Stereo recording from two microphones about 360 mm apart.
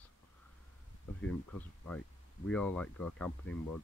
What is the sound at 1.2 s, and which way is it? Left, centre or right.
Speech, centre.